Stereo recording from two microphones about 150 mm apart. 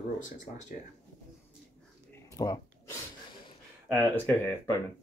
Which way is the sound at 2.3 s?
25° left (ahead or behind).